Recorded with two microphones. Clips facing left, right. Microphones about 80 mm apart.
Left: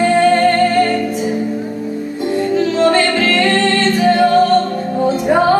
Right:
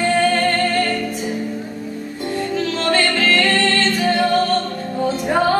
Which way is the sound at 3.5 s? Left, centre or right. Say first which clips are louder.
Left 4 dB; centre.